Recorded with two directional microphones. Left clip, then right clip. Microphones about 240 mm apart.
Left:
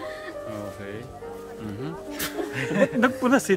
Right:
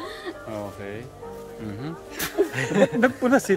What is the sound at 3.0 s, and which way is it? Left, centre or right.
Speech, centre.